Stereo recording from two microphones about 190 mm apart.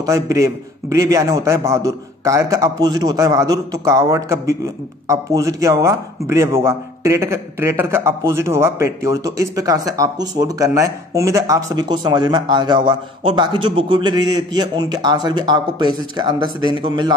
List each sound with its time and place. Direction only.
0.0 s speech: 15° right (ahead or behind)